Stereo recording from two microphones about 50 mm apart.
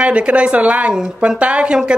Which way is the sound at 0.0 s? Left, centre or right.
Right.